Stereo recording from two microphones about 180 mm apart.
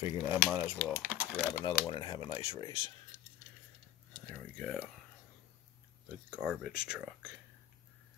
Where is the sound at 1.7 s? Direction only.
25° left (ahead or behind).